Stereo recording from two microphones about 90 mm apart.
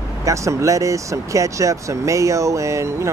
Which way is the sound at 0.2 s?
35° right (ahead or behind).